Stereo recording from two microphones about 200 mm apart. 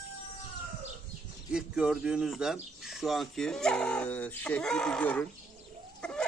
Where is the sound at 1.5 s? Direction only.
5° right (ahead or behind).